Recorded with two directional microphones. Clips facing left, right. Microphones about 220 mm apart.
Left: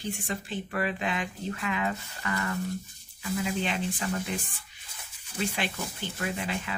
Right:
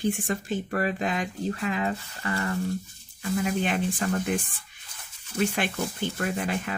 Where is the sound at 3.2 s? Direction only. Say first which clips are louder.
Right 4 dB; 50° right (ahead or behind).